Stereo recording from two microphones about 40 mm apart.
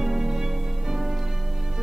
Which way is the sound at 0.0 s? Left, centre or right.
Centre.